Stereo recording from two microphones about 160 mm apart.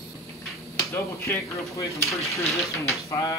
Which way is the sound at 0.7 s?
20° left (ahead or behind).